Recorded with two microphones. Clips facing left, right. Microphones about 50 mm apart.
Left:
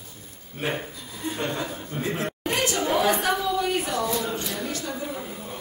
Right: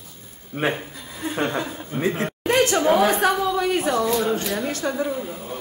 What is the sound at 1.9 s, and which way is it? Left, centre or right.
Speech, centre.